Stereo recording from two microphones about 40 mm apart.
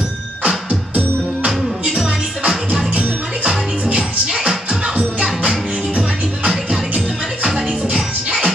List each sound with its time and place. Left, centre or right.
0.7 s music: right
2.0 s music: right